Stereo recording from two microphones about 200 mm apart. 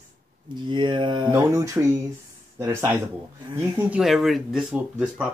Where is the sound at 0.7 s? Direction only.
25° right (ahead or behind).